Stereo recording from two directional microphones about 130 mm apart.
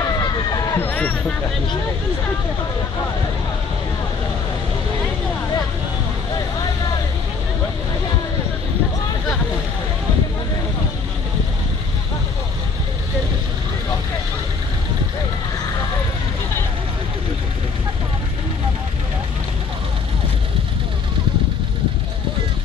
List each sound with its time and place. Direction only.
0.2 s run: 30° left (ahead or behind)
0.7 s speech: 10° left (ahead or behind)